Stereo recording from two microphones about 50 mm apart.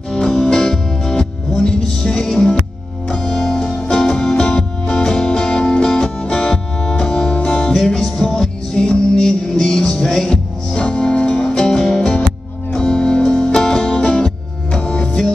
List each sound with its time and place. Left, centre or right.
0.1 s music: centre
7.3 s music: centre
7.7 s music: centre